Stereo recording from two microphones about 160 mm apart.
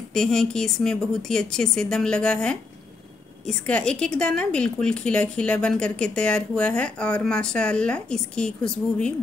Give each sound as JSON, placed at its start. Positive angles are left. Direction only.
{"t": 0.1, "sound": "speech", "side_deg": 5}